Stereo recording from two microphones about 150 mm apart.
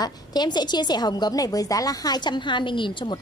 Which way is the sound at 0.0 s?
30° left (ahead or behind).